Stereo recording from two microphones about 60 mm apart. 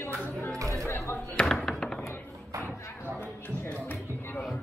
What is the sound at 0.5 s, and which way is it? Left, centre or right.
Chatter, right.